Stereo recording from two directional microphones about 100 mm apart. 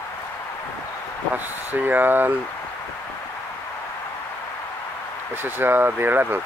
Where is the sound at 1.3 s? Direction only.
20° right (ahead or behind).